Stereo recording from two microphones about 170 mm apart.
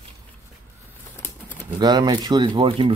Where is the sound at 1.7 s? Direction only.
25° right (ahead or behind).